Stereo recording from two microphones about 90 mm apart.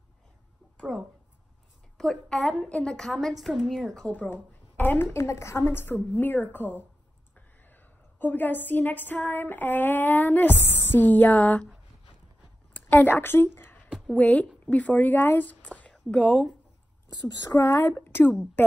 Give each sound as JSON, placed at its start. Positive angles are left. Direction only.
{"t": 0.7, "sound": "a woman's voice", "side_deg": 5}
{"t": 4.1, "sound": "a woman's voice", "side_deg": 20}
{"t": 12.7, "sound": "a woman's voice", "side_deg": 20}
{"t": 17.6, "sound": "a woman's voice", "side_deg": 25}